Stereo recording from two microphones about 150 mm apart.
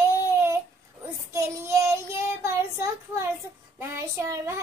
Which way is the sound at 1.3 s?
20° right (ahead or behind).